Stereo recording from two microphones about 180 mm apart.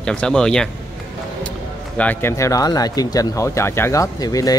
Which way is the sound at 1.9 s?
10° left (ahead or behind).